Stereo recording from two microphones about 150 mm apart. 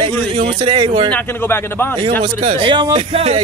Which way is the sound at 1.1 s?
15° left (ahead or behind).